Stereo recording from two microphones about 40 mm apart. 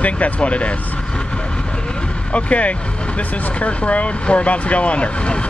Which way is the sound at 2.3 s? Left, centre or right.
Left.